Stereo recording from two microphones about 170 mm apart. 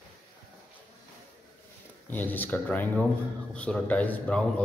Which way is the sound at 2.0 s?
10° left (ahead or behind).